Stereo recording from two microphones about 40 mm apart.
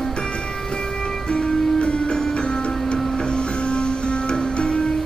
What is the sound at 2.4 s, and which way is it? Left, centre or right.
Music, left.